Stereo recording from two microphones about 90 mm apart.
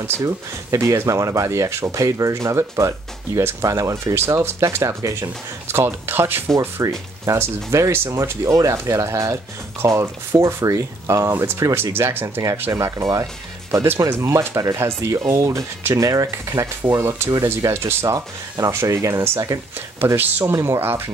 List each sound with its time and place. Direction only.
0.2 s speech: 35° right (ahead or behind)
6.8 s speech: 35° right (ahead or behind)
12.7 s speech: 35° right (ahead or behind)
18.0 s speech: 45° right (ahead or behind)
18.7 s speech: 30° right (ahead or behind)